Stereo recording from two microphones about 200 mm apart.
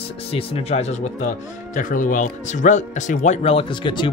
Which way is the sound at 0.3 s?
30° left (ahead or behind).